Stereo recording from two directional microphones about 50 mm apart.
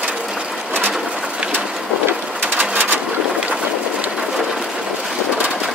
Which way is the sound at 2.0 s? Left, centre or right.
Right.